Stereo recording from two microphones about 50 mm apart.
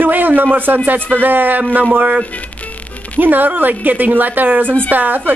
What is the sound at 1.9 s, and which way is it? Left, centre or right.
Speech, right.